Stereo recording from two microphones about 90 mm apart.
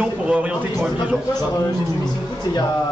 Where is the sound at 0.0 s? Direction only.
15° right (ahead or behind).